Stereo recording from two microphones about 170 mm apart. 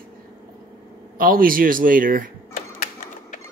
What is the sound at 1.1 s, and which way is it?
A man's voice, 55° right (ahead or behind).